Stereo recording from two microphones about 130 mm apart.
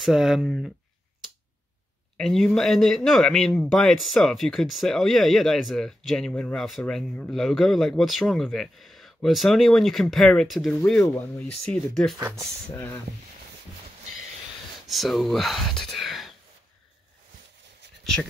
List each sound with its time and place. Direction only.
0.0 s speech: 5° right (ahead or behind)
2.1 s speech: 5° left (ahead or behind)
12.7 s speech: 15° left (ahead or behind)
14.9 s speech: centre (ahead or behind)